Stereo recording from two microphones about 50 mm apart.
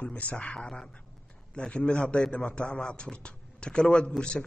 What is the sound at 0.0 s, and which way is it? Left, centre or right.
Speech, left.